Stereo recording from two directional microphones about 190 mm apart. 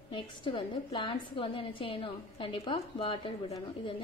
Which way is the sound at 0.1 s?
25° left (ahead or behind).